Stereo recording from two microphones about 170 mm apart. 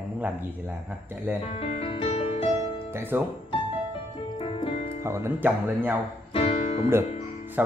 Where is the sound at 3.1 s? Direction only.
15° right (ahead or behind).